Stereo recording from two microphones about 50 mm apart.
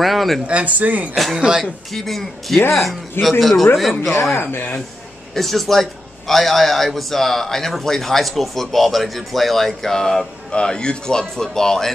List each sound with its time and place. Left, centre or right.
0.0 s speech: centre
0.5 s speech: right
1.1 s a man's voice: centre
1.4 s speech: centre
2.0 s a man's voice: centre
4.1 s speech: left
5.3 s a man's voice: centre